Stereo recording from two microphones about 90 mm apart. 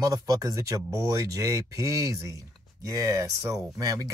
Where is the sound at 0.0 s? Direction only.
40° right (ahead or behind).